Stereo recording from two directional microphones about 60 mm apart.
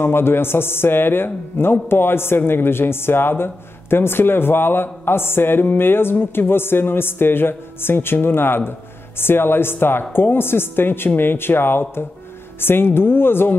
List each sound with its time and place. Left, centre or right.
0.0 s a man's voice: left